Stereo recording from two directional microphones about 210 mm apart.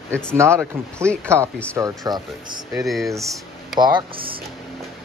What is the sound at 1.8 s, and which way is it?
Speech, 15° right (ahead or behind).